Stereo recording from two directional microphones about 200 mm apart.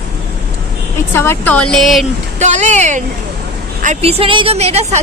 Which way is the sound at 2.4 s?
35° right (ahead or behind).